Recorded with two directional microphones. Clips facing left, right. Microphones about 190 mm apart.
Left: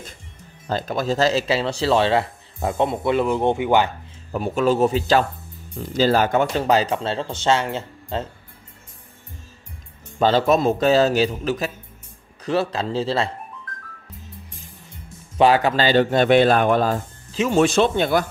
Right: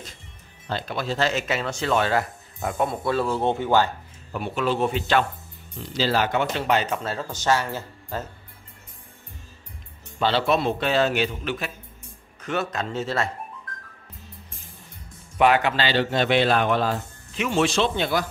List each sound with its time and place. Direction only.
0.7 s speech: 45° left (ahead or behind); by 3.9 s 15° left (ahead or behind)
4.3 s speech: 40° left (ahead or behind)
5.8 s speech: 45° left (ahead or behind); by 8.3 s 25° left (ahead or behind)
10.1 s speech: 45° left (ahead or behind)
15.3 s a man's voice: 30° left (ahead or behind); by 18.2 s 50° left (ahead or behind)